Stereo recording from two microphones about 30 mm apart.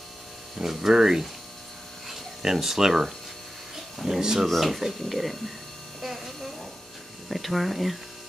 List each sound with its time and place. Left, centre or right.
0.6 s speech: centre
4.5 s speech: centre
5.9 s a sound: centre
7.2 s speech: centre